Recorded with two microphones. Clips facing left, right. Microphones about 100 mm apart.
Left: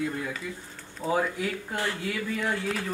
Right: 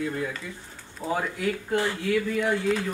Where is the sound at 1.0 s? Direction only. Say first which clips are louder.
Left 1 dB; 5° right (ahead or behind).